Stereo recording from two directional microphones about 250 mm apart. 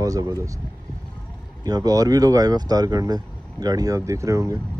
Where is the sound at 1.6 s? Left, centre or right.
Centre.